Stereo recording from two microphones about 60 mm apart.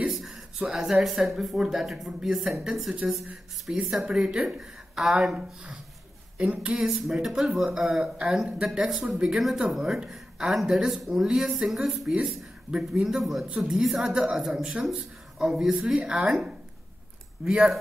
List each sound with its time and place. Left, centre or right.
0.1 s a sound: centre
0.7 s a woman's voice: centre
6.3 s speech: centre
6.9 s a woman's voice: centre
13.5 s a woman's voice: centre